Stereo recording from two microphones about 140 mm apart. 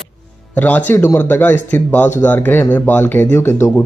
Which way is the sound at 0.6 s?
10° left (ahead or behind).